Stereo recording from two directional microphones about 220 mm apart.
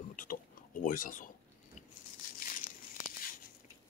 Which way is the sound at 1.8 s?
35° left (ahead or behind).